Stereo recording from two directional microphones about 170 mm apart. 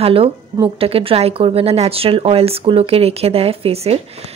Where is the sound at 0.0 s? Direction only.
35° right (ahead or behind).